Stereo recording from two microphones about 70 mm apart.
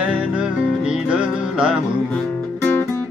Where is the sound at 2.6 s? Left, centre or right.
Left.